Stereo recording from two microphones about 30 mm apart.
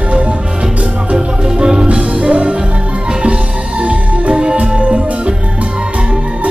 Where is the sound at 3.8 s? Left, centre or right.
Right.